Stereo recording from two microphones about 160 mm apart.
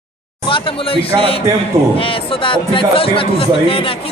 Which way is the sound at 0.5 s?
35° left (ahead or behind).